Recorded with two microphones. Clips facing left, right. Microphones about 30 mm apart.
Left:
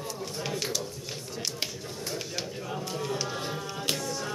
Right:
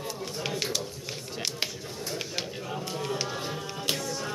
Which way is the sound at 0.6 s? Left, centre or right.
Centre.